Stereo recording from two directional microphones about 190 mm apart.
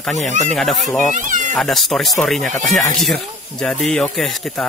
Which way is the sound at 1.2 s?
45° right (ahead or behind).